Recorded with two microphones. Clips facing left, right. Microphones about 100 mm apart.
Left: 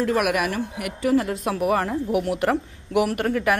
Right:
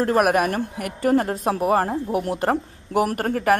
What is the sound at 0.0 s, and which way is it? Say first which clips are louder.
A woman's voice: right 3 dB; 40° right (ahead or behind).